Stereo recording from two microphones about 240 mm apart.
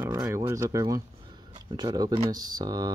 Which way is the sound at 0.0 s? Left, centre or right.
Centre.